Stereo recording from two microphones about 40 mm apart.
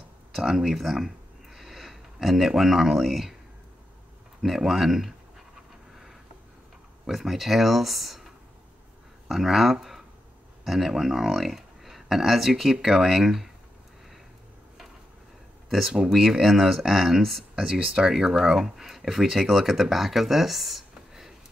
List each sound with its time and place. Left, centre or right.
0.4 s speech: centre
4.4 s speech: centre
7.1 s speech: centre
9.3 s speech: centre
10.6 s a sound: centre
11.0 s speech: centre
15.7 s speech: centre
17.7 s speech: right
18.1 s speech: centre